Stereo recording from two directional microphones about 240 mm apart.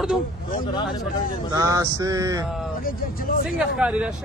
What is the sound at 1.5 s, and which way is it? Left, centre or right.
Speech, centre.